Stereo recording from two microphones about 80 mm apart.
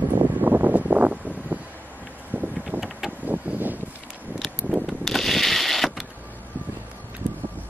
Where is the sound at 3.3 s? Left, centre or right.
Right.